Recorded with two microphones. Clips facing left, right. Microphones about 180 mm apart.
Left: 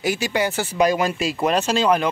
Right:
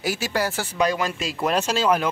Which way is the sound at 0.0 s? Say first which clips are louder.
Left 3 dB; centre (ahead or behind).